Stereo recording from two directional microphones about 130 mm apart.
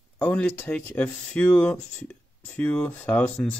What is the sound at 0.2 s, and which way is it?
Speech, 10° left (ahead or behind).